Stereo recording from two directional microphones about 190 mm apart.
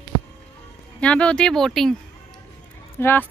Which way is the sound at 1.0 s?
5° left (ahead or behind).